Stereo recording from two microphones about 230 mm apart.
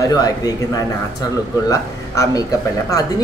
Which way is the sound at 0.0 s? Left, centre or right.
Centre.